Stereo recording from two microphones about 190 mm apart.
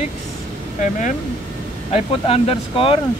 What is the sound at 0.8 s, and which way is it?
Speech, 40° left (ahead or behind).